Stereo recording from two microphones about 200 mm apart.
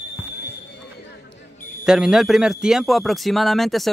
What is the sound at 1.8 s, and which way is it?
A man's voice, 5° right (ahead or behind).